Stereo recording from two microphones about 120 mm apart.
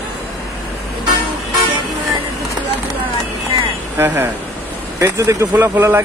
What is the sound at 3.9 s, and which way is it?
Speech, 20° right (ahead or behind).